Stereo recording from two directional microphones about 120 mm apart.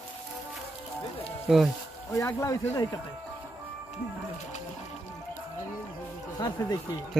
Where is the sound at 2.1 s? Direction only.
25° left (ahead or behind).